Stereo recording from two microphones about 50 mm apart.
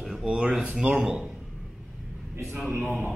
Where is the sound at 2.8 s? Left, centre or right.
Centre.